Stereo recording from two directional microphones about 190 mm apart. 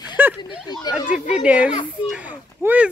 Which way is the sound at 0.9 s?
20° left (ahead or behind).